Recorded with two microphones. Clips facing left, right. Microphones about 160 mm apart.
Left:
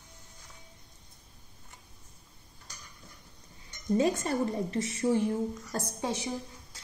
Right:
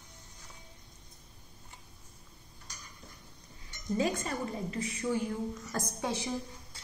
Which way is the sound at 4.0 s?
30° left (ahead or behind).